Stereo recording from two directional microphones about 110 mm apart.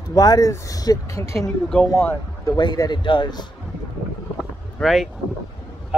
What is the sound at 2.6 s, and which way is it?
Speech, 40° left (ahead or behind).